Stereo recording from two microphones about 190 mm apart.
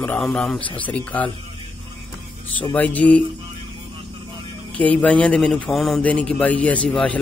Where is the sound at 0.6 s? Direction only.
25° left (ahead or behind).